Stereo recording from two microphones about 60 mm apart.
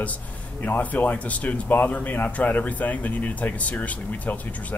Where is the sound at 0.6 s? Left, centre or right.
Left.